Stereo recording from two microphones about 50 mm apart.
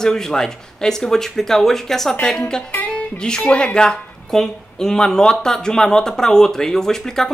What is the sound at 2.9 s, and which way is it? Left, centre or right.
Music, centre.